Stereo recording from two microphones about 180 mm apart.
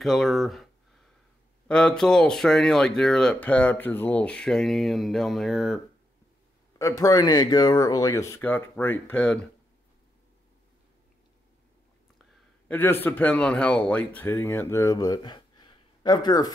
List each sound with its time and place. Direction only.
0.0 s speech: centre (ahead or behind)
1.7 s speech: 5° left (ahead or behind)
6.8 s speech: 15° left (ahead or behind)
12.6 s speech: 10° left (ahead or behind)